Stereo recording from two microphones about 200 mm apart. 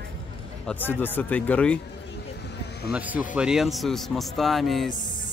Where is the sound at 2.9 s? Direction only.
10° right (ahead or behind).